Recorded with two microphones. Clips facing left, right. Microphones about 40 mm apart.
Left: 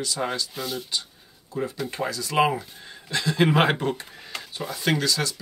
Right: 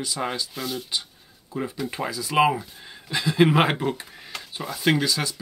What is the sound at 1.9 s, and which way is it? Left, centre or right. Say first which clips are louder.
Speech: even; centre.